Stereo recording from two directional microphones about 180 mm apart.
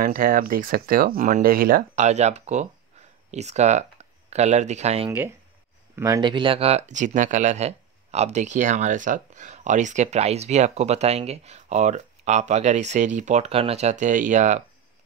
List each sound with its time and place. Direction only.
0.0 s speech: 50° right (ahead or behind); by 5.1 s 35° right (ahead or behind)
5.9 s speech: 20° right (ahead or behind); by 14.6 s 45° right (ahead or behind)